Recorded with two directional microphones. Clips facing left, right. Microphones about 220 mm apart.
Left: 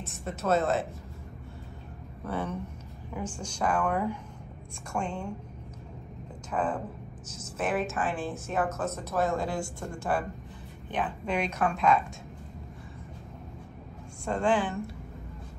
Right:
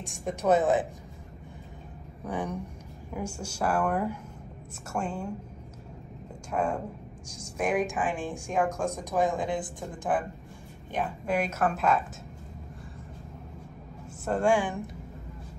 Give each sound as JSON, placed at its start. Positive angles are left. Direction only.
{"t": 0.0, "sound": "a woman's voice", "side_deg": -15}
{"t": 2.2, "sound": "a woman's voice", "side_deg": -15}
{"t": 6.5, "sound": "a woman's voice", "side_deg": -10}
{"t": 14.2, "sound": "a woman's voice", "side_deg": -10}